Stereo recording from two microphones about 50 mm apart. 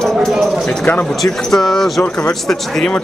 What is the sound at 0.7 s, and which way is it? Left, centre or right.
Speech, left.